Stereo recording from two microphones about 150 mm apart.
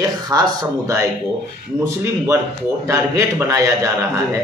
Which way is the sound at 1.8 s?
20° right (ahead or behind).